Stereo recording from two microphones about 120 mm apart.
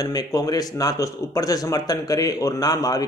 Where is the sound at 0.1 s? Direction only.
30° left (ahead or behind).